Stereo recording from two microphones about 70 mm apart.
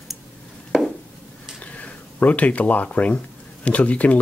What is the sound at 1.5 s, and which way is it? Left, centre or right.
Speech, centre.